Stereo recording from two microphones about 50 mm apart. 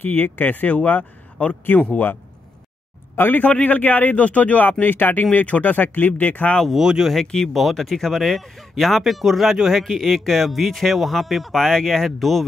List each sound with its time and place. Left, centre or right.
0.0 s speech: left
3.2 s speech: left
5.2 s speech: left
6.7 s speech: centre
7.2 s speech: centre
7.5 s speech: centre